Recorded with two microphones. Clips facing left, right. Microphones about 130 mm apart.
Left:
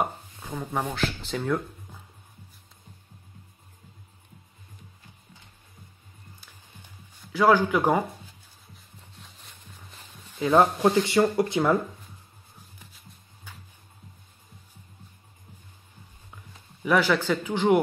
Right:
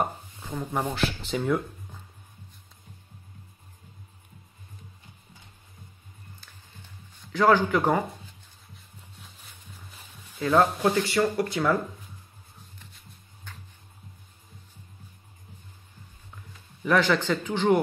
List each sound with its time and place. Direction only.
0.0 s a sound: 5° left (ahead or behind)
0.9 s speech: centre (ahead or behind)
7.3 s speech: 10° left (ahead or behind)
8.7 s a sound: centre (ahead or behind)
10.4 s speech: 10° left (ahead or behind)
11.0 s speech: 25° left (ahead or behind)
12.7 s shuffling cards: 10° left (ahead or behind)
16.8 s speech: 5° left (ahead or behind)